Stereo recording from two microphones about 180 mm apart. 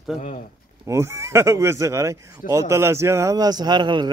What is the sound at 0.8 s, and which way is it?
Speech, 15° right (ahead or behind).